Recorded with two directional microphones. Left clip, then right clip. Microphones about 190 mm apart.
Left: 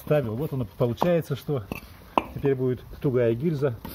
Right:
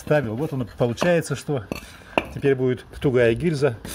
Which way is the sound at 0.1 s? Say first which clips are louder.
Right 3 dB; 35° right (ahead or behind).